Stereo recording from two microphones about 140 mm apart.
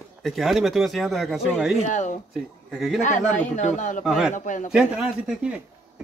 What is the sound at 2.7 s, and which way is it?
Speech, centre (ahead or behind).